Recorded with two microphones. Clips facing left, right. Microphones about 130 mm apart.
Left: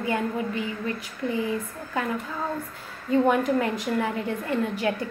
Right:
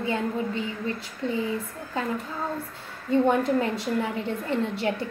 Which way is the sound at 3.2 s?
25° right (ahead or behind).